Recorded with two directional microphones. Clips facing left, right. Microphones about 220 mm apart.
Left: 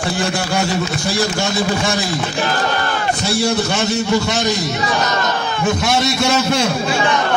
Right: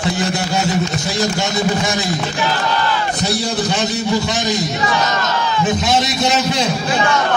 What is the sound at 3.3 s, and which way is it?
A woman's voice, 20° right (ahead or behind).